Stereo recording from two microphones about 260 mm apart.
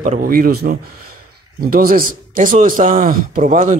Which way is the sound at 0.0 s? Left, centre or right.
Right.